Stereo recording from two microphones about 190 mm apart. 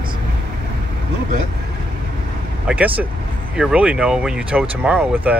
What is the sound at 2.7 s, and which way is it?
Speech, 5° right (ahead or behind).